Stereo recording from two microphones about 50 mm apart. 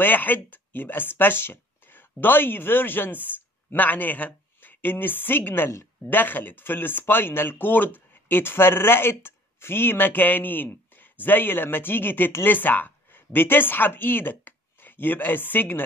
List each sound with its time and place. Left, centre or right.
0.0 s a woman's voice: left